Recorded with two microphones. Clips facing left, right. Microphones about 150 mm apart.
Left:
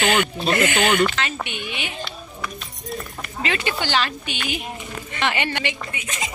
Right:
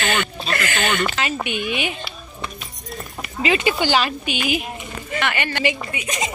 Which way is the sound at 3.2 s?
10° right (ahead or behind).